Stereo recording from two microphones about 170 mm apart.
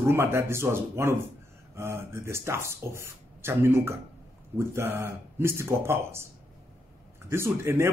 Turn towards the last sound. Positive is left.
turn(degrees=-15)  # may be behind; listen again after turning